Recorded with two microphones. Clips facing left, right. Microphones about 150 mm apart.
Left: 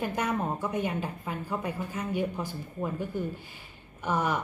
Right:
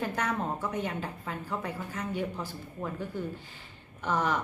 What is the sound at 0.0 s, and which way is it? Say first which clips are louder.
A woman's voice: left 2 dB; 10° left (ahead or behind).